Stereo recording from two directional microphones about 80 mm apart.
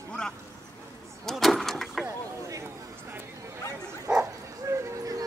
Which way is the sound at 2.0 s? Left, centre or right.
Right.